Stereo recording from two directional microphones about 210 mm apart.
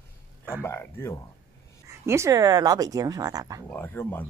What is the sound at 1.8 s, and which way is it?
Speech, 15° right (ahead or behind).